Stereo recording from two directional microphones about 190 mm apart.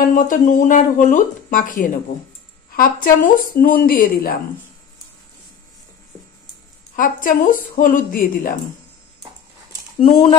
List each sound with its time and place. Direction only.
0.0 s speech: 45° left (ahead or behind)
7.0 s speech: 45° left (ahead or behind)